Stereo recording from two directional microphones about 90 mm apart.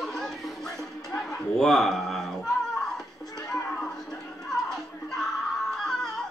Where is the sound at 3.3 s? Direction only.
40° left (ahead or behind).